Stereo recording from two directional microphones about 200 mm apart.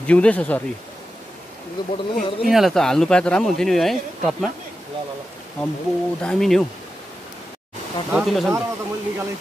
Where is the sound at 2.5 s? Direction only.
Centre (ahead or behind).